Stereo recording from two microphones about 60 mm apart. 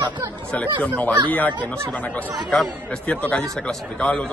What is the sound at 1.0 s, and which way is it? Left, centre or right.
A man's voice, left.